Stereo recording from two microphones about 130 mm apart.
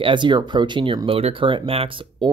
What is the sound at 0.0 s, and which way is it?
Speech, 40° right (ahead or behind).